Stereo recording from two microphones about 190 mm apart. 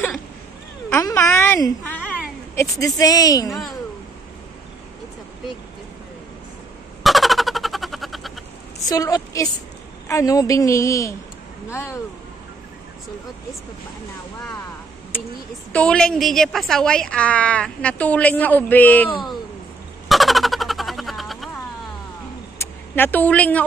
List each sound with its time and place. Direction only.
1.0 s a woman's voice: 15° left (ahead or behind)
3.4 s speech: centre (ahead or behind)
7.0 s a sound: centre (ahead or behind)
8.8 s a woman's voice: 20° left (ahead or behind)
15.7 s a woman's voice: 5° left (ahead or behind)
20.1 s fowl: centre (ahead or behind)
22.6 s speech: 10° left (ahead or behind)